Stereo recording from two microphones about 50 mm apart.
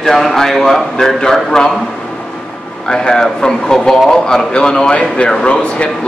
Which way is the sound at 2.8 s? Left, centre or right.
Centre.